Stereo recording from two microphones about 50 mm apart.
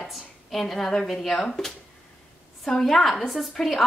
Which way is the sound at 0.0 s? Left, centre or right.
Centre.